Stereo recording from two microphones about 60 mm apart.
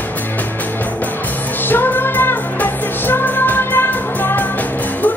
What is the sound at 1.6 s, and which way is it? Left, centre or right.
Music, left.